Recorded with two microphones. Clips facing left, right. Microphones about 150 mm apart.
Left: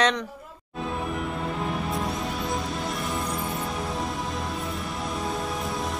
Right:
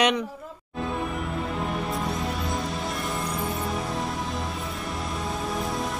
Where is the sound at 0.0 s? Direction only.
5° right (ahead or behind).